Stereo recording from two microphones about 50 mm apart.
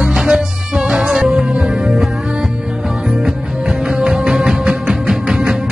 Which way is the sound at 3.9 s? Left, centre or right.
Right.